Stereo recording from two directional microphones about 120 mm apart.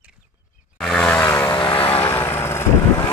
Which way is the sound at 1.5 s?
40° left (ahead or behind).